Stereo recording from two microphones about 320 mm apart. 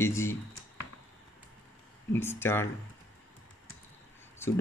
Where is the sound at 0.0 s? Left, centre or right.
Centre.